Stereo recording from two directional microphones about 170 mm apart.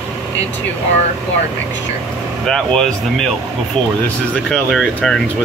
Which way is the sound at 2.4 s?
5° left (ahead or behind).